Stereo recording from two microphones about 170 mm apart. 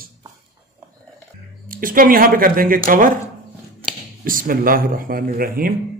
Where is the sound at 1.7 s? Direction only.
55° right (ahead or behind).